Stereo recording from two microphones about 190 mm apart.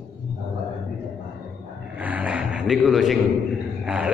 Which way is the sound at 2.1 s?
10° right (ahead or behind).